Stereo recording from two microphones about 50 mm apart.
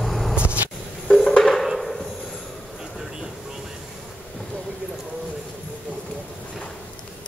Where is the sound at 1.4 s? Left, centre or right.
Centre.